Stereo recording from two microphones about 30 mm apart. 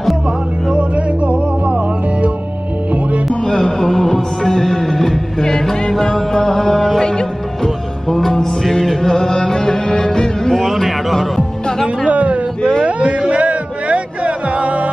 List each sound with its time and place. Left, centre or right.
0.7 s music: right
3.4 s music: centre
5.4 s music: left
6.3 s chant: centre
7.6 s music: centre
10.6 s music: centre
12.1 s a sound: right
13.3 s music: right